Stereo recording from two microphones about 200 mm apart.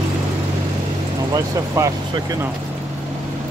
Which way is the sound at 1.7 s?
15° right (ahead or behind).